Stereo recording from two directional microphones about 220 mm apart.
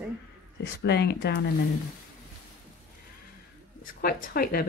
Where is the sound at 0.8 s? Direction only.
50° left (ahead or behind).